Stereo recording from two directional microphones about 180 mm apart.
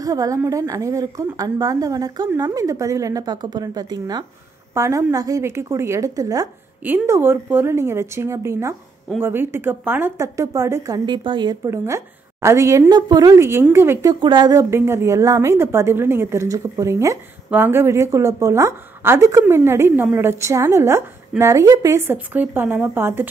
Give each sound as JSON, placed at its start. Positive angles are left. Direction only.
{"t": 0.0, "sound": "a woman's voice", "side_deg": -20}
{"t": 14.2, "sound": "a woman's voice", "side_deg": -25}